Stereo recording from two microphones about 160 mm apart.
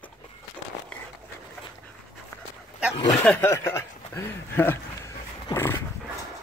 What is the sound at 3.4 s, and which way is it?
Speech, 15° left (ahead or behind).